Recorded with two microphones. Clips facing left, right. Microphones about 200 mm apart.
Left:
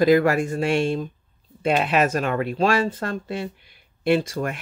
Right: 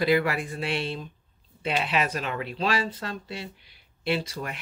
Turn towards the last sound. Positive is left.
turn(degrees=50)  # may be behind; listen again after turning